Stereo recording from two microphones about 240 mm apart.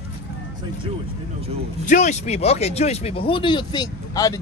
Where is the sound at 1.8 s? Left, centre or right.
Left.